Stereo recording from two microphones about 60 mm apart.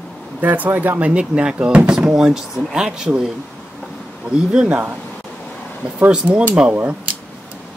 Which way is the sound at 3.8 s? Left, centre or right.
Centre.